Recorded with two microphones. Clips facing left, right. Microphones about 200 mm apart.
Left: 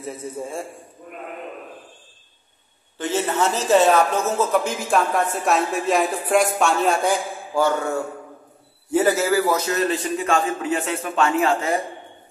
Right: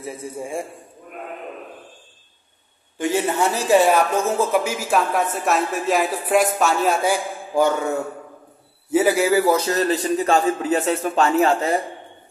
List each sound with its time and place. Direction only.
0.2 s a man's voice: 15° right (ahead or behind)
3.0 s speech: 10° right (ahead or behind)
7.5 s a man's voice: 15° right (ahead or behind)
8.9 s a man's voice: 10° right (ahead or behind)
9.8 s a man's voice: 35° right (ahead or behind)